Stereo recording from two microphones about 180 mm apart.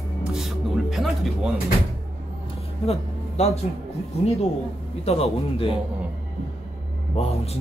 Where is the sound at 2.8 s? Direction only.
35° left (ahead or behind).